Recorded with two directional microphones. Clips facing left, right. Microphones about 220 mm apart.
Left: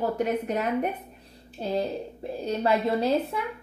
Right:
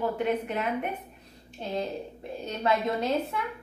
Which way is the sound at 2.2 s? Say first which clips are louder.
Left 6 dB; 35° left (ahead or behind).